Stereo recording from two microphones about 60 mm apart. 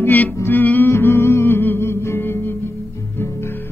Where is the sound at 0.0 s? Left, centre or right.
Left.